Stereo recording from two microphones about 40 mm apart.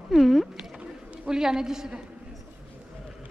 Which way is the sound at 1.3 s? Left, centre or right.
Centre.